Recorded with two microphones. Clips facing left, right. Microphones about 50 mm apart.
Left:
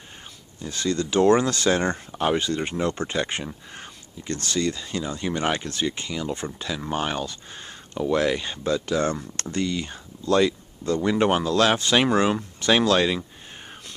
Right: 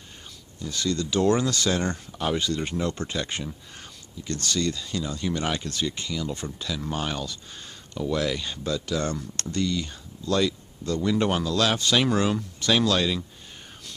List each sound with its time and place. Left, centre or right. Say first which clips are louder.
0.6 s speech: even; left
0.8 s speech: left 4 dB; centre